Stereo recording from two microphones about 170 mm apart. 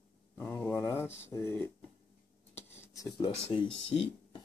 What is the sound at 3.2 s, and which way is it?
Speech, 30° left (ahead or behind).